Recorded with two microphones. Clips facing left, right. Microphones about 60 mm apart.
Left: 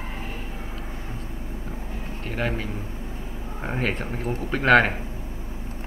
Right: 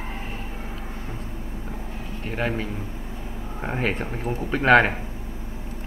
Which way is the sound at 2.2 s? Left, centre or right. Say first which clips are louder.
Right 1 dB; centre.